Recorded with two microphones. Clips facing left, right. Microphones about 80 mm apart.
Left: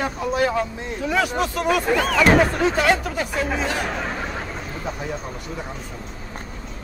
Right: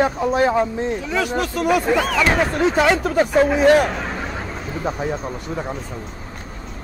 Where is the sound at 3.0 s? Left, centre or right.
Right.